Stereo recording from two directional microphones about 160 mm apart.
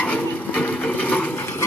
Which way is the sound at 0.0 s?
5° left (ahead or behind).